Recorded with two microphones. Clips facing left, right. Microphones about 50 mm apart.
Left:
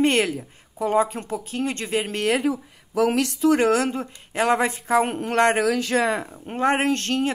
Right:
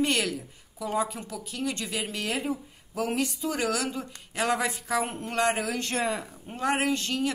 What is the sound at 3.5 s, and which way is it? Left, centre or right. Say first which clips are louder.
Speech: left 9 dB; left.